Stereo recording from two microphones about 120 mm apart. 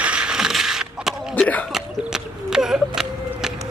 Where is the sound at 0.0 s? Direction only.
10° right (ahead or behind).